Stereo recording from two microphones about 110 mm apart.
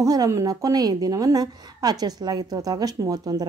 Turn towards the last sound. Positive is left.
turn(degrees=-35)  # may be behind; listen again after turning